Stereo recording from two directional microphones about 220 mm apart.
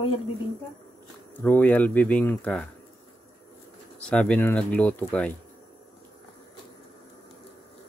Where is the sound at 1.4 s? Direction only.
5° left (ahead or behind).